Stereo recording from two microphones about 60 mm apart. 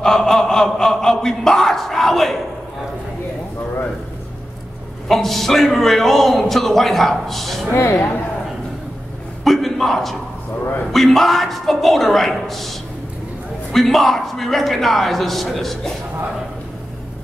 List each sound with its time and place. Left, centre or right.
0.0 s speech: centre
5.0 s a man's voice: centre
7.7 s speech: left
9.4 s a man's voice: centre